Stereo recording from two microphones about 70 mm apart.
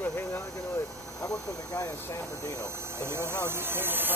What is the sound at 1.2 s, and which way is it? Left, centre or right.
Speech, left.